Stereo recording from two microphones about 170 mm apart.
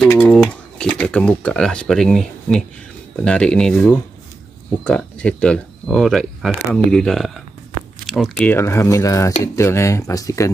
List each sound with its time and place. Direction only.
0.3 s speech: 5° left (ahead or behind)
8.5 s speech: 15° left (ahead or behind)